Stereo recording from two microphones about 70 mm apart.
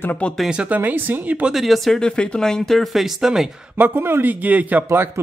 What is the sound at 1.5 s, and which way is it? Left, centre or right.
Speech, centre.